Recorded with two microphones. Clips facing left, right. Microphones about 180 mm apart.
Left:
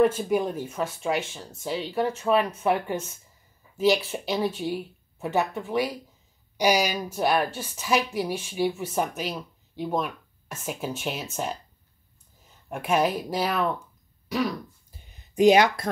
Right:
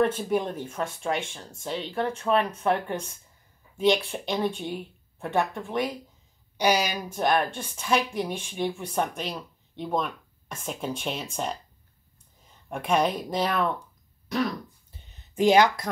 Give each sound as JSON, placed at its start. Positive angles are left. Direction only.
{"t": 0.0, "sound": "a woman's voice", "side_deg": 10}
{"t": 12.6, "sound": "speech", "side_deg": 5}
{"t": 15.0, "sound": "a sound", "side_deg": 15}